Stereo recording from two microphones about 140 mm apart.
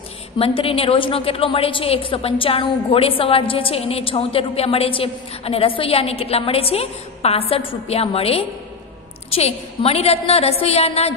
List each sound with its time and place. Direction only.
0.4 s a woman's voice: 45° left (ahead or behind)